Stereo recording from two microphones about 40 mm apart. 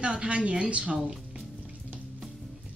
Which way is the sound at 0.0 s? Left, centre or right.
Right.